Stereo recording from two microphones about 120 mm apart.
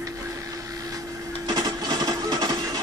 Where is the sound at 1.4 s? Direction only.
35° right (ahead or behind).